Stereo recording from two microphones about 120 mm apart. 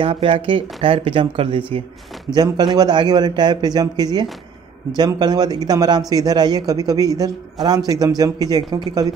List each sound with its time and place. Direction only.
0.0 s speech: 50° right (ahead or behind)
2.3 s a man's voice: 35° right (ahead or behind)